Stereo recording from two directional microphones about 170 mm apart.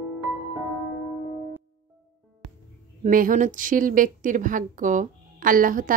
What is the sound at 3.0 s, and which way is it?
A woman's voice, 50° right (ahead or behind).